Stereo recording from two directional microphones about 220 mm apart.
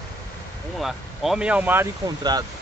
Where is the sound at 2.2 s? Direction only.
20° right (ahead or behind).